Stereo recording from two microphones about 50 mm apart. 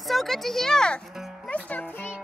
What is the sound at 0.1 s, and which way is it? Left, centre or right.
Speech, centre.